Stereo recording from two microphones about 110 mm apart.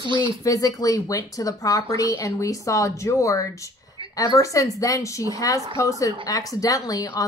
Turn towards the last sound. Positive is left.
turn(degrees=30)  # may be behind; listen again after turning